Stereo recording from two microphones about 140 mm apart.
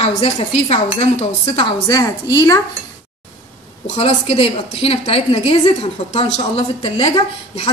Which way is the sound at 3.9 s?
50° left (ahead or behind).